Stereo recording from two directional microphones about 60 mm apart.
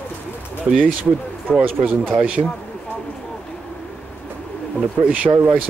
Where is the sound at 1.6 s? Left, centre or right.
Right.